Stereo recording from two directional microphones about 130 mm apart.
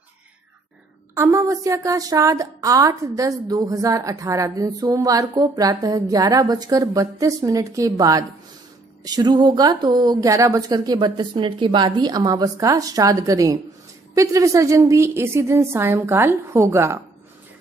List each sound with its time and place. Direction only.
1.1 s a woman's voice: 25° right (ahead or behind)